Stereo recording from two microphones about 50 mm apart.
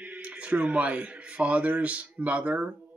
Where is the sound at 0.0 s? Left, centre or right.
Right.